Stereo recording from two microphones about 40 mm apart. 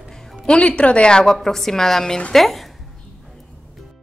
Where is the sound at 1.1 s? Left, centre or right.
Centre.